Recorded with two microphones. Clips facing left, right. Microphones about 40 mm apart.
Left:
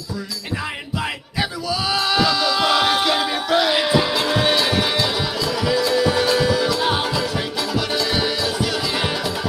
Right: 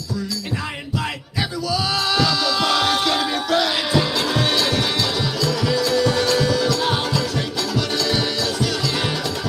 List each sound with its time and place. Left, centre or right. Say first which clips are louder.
1.7 s music: left 1 dB; centre